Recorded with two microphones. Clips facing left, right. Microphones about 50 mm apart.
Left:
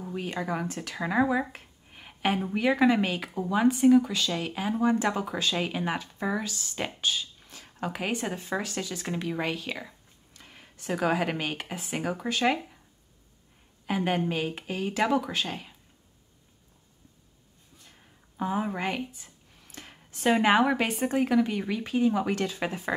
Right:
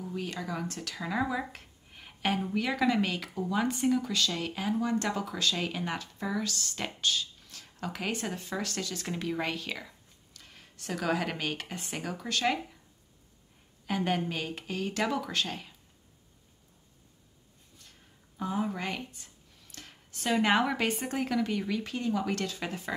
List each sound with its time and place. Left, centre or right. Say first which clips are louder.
0.0 s speech: left 3 dB; left
7.4 s a sound: left 4 dB; left
8.1 s speech: left 3 dB; centre
13.8 s speech: left 3 dB; centre
18.4 s speech: left 3 dB; left
18.9 s speech: left 5 dB; centre
19.7 s a sound: left 3 dB; left
20.4 s speech: left 2 dB; centre